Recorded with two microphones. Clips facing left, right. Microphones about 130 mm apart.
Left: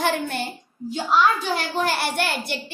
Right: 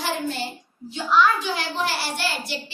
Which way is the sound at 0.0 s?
55° left (ahead or behind).